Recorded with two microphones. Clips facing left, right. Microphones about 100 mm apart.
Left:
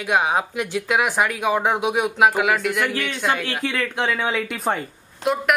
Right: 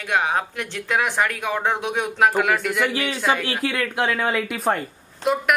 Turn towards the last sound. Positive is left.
turn(degrees=0)  # may be behind; listen again after turning